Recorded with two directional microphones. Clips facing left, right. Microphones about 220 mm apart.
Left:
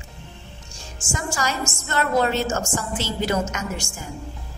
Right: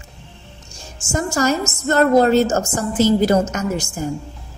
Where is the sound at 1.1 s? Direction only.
45° right (ahead or behind).